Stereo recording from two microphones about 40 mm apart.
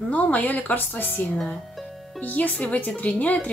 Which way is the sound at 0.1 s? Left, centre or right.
Left.